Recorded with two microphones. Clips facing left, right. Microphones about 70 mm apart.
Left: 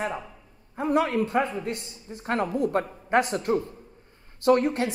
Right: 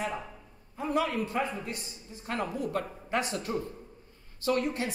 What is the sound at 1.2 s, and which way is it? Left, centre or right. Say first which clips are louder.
Speech: left 6 dB; left.